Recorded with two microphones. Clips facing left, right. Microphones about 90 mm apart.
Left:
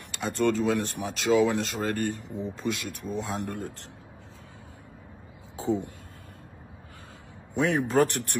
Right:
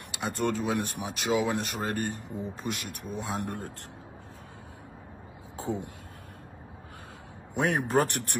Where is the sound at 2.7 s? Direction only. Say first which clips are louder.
Left 3 dB; 55° right (ahead or behind).